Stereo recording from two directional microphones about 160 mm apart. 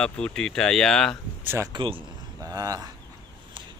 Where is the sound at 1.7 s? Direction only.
30° right (ahead or behind).